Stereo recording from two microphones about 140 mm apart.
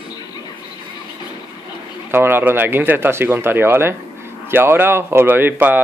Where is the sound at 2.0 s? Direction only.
15° right (ahead or behind).